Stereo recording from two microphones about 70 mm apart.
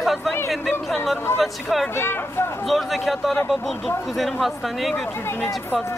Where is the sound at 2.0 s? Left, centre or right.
Left.